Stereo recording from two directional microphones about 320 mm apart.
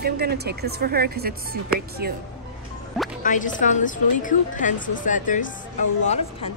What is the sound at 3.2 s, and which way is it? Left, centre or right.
A woman's voice, left.